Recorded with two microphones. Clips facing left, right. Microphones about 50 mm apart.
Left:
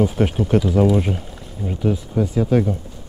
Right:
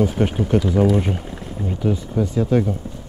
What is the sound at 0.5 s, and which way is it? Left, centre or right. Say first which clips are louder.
Speech: left 1 dB; centre.